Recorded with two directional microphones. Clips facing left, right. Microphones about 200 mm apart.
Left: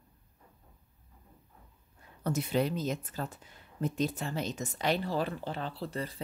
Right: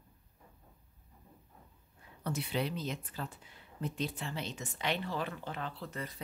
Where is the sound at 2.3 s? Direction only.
45° left (ahead or behind).